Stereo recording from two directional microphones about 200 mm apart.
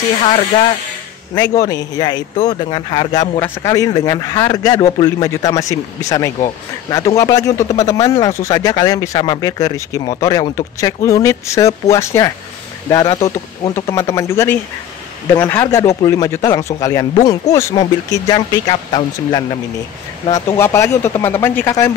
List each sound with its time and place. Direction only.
0.2 s speech: 30° left (ahead or behind)
1.3 s a man's voice: 20° left (ahead or behind)
20.5 s speech: 15° left (ahead or behind)